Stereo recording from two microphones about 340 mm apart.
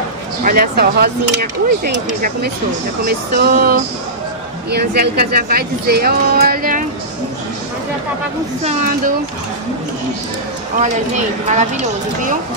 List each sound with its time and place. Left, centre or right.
0.4 s speech: right
11.4 s speech: right